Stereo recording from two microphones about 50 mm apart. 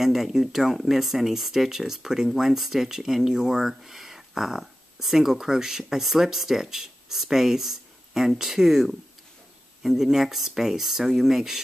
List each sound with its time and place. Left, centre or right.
0.0 s speech: centre